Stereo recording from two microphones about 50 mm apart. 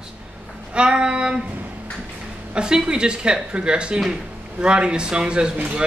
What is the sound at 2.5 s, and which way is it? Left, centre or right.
Speech, centre.